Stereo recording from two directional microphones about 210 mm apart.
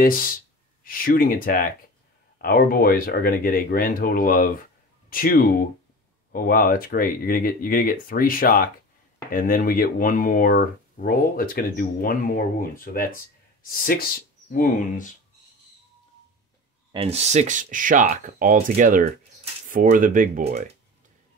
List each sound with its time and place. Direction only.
0.8 s speech: 45° left (ahead or behind)
14.5 s speech: 40° left (ahead or behind)
16.9 s speech: 30° right (ahead or behind)